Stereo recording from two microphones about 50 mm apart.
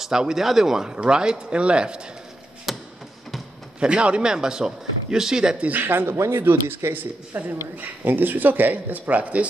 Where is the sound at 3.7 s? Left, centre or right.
Right.